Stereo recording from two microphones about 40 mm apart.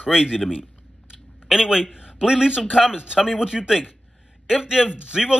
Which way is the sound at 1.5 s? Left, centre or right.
Centre.